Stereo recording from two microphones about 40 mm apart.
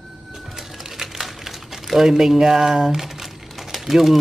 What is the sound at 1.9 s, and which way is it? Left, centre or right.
Speech, centre.